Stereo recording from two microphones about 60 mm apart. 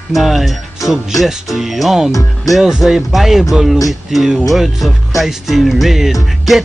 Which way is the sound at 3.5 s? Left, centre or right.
Centre.